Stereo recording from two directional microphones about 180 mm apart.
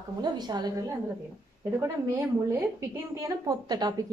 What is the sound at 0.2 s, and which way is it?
A woman's voice, 25° right (ahead or behind).